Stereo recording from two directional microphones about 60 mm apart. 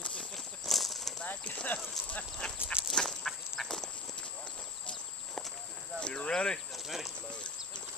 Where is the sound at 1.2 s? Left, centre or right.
Left.